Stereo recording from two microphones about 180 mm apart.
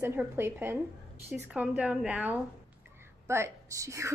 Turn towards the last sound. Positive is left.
turn(degrees=-15)  # may be behind; listen again after turning